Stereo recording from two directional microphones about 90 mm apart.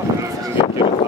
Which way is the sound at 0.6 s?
65° left (ahead or behind).